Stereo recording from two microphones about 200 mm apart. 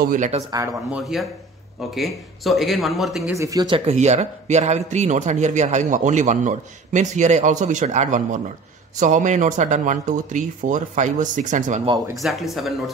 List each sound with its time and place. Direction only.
0.0 s a man's voice: 40° right (ahead or behind)
0.9 s speech: centre (ahead or behind)
3.3 s a man's voice: 20° right (ahead or behind); by 11.9 s 40° right (ahead or behind)
12.2 s speech: centre (ahead or behind)